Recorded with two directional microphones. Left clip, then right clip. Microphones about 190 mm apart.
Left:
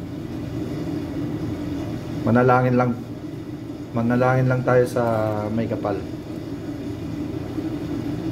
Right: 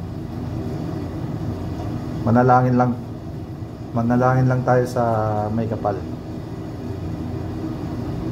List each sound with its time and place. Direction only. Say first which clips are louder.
2.2 s speech: right 2 dB; 30° left (ahead or behind)
3.9 s speech: right 1 dB; 30° left (ahead or behind)